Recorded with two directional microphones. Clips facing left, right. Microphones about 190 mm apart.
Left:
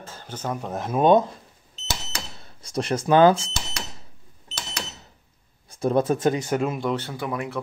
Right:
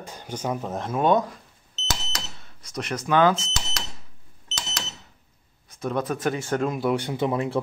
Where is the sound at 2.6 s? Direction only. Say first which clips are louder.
Left 5 dB; 30° left (ahead or behind).